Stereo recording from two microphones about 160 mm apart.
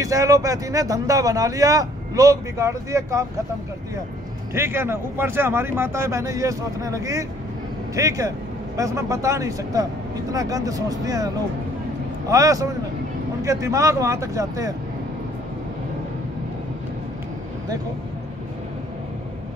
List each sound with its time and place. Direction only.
0.0 s speech: 20° right (ahead or behind)
4.6 s speech: 15° right (ahead or behind)
12.3 s speech: 20° right (ahead or behind)